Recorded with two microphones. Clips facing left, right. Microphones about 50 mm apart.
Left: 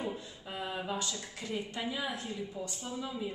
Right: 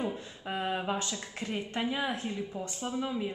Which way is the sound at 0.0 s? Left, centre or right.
Right.